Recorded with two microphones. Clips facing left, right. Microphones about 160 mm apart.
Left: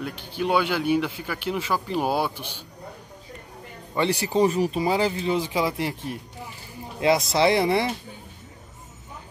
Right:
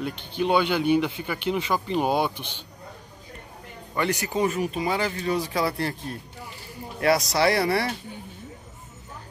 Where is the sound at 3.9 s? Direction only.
25° left (ahead or behind).